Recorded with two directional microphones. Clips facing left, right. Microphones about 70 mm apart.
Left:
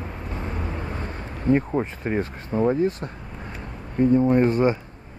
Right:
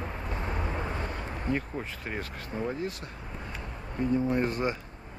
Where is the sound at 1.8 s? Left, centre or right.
Left.